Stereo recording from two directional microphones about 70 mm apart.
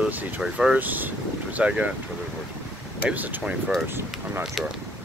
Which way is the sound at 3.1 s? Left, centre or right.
Right.